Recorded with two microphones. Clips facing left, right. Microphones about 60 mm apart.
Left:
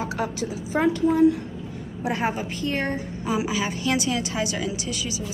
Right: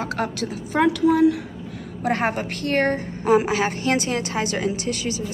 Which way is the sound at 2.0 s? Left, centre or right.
Right.